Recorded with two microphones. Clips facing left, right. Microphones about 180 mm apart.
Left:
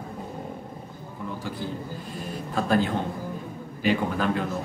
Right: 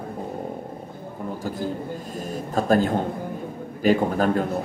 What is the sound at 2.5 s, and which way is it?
Speech, 45° right (ahead or behind).